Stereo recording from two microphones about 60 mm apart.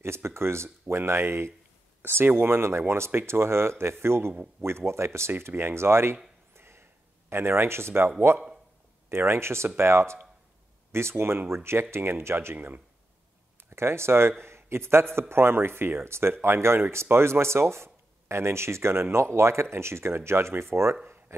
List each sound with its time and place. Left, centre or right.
0.0 s speech: right
6.5 s a sound: right
9.1 s speech: right
12.5 s speech: right
13.7 s speech: right
21.3 s a sound: right